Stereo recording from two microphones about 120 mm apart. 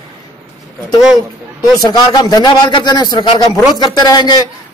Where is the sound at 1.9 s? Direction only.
35° left (ahead or behind).